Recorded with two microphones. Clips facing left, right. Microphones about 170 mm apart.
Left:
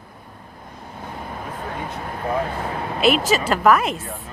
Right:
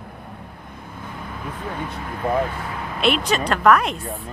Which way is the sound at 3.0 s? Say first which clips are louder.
Left 2 dB; centre (ahead or behind).